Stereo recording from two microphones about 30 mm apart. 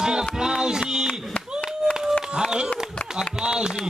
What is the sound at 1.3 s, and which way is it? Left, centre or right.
Clapping, left.